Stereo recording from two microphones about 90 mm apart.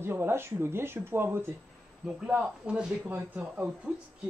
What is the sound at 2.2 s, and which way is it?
Speech, 15° right (ahead or behind).